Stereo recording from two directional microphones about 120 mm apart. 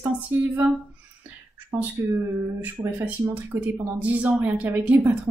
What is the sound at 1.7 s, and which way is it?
A woman's voice, 15° right (ahead or behind).